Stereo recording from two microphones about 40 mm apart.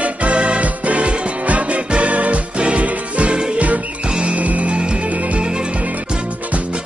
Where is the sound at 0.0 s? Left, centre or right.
Right.